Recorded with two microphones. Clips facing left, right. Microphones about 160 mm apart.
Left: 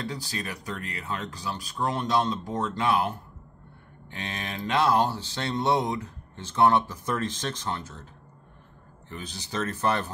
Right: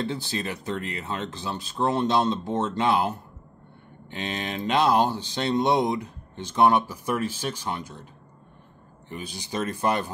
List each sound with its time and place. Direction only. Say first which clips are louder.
0.0 s speech: right 5 dB; 25° right (ahead or behind)
9.1 s speech: right 2 dB; 15° right (ahead or behind)